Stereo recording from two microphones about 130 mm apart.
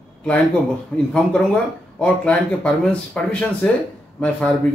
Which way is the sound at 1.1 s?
10° left (ahead or behind).